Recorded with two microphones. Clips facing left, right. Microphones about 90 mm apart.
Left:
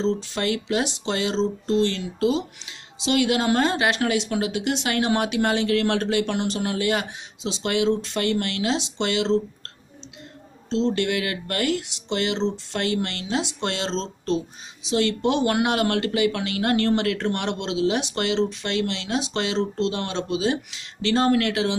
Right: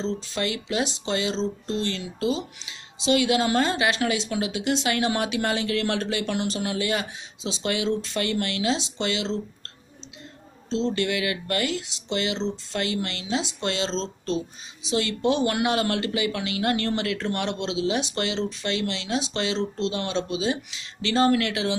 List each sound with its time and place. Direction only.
0.4 s speech: 55° left (ahead or behind)
11.0 s speech: 50° left (ahead or behind)
13.4 s speech: 60° left (ahead or behind)
21.0 s speech: 45° left (ahead or behind)